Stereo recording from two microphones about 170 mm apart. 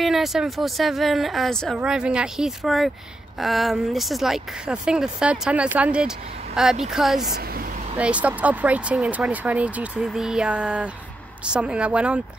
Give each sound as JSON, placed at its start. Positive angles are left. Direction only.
{"t": 0.0, "sound": "speech", "side_deg": 0}
{"t": 7.2, "sound": "speech", "side_deg": -60}
{"t": 8.0, "sound": "speech", "side_deg": -10}